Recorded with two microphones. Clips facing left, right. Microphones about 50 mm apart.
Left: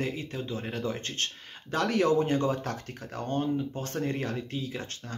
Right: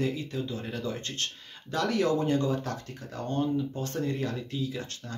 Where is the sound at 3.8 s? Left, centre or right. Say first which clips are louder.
Even; left.